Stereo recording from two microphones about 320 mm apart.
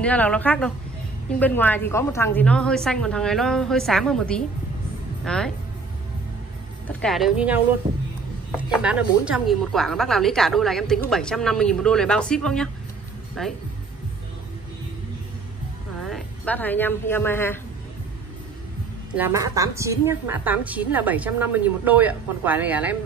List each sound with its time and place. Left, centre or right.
0.0 s speech: centre
6.9 s speech: centre
8.5 s speech: centre
16.0 s a woman's voice: centre
19.1 s speech: centre